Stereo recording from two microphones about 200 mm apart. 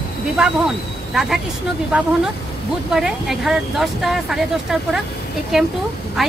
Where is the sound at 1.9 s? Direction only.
5° right (ahead or behind).